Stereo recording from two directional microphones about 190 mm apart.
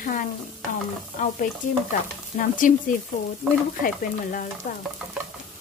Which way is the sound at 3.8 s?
45° left (ahead or behind).